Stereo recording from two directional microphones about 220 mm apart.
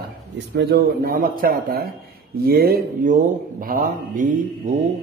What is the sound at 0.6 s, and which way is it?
A man's voice, 45° right (ahead or behind).